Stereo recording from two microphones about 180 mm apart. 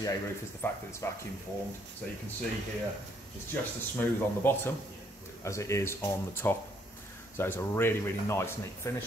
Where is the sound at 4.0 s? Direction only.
10° left (ahead or behind).